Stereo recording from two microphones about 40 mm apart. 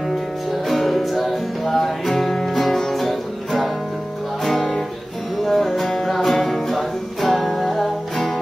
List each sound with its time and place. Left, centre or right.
0.1 s music: centre